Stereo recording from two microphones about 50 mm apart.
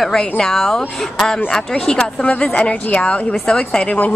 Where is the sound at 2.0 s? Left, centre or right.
Left.